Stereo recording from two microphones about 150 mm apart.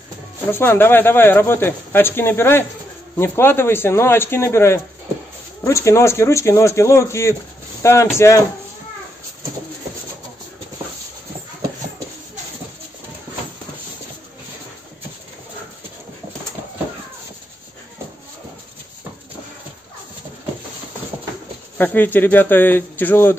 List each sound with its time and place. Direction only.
0.5 s speech: 15° left (ahead or behind)
21.7 s speech: 10° left (ahead or behind)